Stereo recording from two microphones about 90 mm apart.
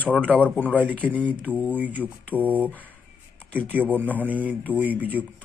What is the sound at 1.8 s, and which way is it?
Speech, 20° right (ahead or behind).